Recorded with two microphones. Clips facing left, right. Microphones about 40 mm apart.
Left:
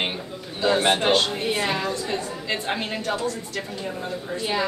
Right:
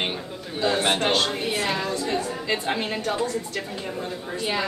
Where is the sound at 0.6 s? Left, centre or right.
Centre.